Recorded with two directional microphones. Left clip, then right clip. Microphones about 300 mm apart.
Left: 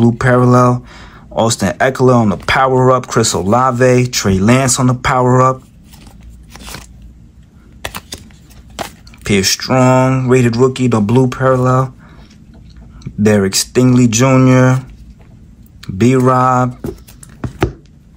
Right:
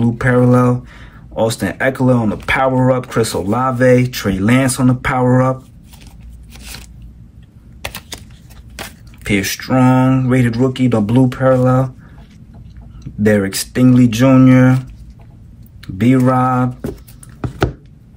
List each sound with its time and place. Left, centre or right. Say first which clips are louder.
0.0 s speech: left 3 dB; centre
6.5 s biting: left 3 dB; centre
8.7 s speech: left 6 dB; centre
13.0 s speech: left 2 dB; centre
15.8 s speech: left 2 dB; centre